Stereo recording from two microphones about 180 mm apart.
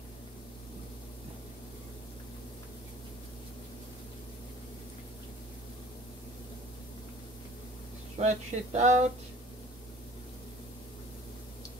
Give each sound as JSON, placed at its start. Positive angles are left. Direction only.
{"t": 8.2, "sound": "speech", "side_deg": -40}